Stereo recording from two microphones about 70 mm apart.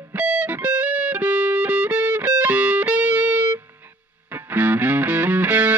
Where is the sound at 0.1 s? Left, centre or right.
Right.